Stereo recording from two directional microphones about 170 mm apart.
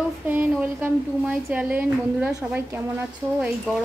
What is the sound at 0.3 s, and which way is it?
A woman's voice, 10° right (ahead or behind).